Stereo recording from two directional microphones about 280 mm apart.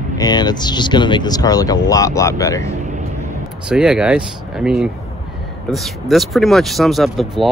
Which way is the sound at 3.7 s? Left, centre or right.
Centre.